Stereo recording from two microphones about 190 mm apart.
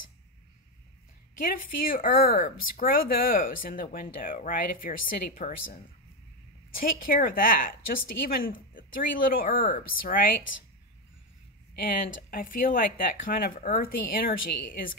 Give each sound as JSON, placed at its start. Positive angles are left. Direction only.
{"t": 1.5, "sound": "a woman's voice", "side_deg": 50}
{"t": 11.7, "sound": "a woman's voice", "side_deg": 50}